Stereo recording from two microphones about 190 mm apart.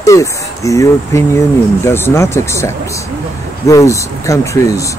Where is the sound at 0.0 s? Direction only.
15° left (ahead or behind).